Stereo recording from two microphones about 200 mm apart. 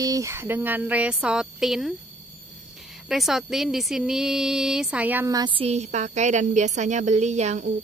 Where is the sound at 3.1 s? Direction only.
Centre (ahead or behind).